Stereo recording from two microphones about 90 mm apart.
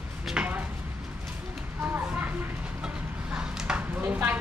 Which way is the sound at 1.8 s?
20° right (ahead or behind).